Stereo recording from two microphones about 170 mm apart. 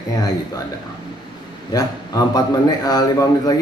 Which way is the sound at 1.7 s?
20° left (ahead or behind).